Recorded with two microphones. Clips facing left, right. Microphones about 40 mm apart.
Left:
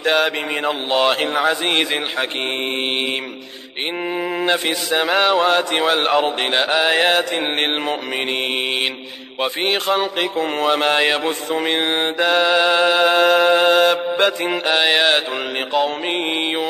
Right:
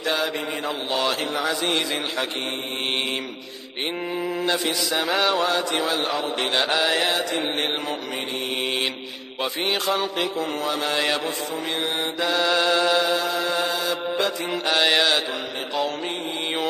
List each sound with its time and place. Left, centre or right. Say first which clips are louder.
0.0 s mantra: left 7 dB; left
4.1 s mantra: left 5 dB; left
5.5 s mantra: left 6 dB; left
6.4 s mantra: left 4 dB; left
9.4 s mantra: left 5 dB; left
14.7 s mantra: left 3 dB; left